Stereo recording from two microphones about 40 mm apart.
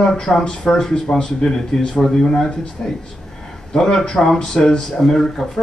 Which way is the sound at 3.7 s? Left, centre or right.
Centre.